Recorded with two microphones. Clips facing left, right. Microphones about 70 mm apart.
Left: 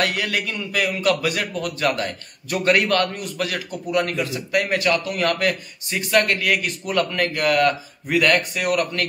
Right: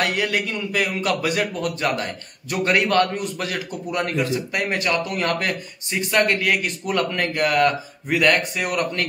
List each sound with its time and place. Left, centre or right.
0.0 s a man's voice: centre